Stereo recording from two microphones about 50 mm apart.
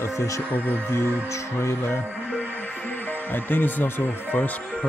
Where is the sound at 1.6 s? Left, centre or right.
Left.